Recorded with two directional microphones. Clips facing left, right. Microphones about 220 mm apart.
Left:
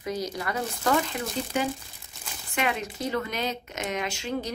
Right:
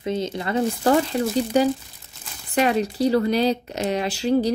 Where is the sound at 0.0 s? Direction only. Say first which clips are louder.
Right 5 dB; 25° right (ahead or behind).